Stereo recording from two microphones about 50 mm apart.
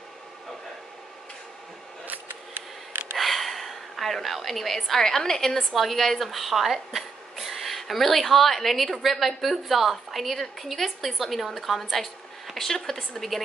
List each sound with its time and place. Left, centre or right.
2.0 s scissors: right
3.2 s a woman's voice: centre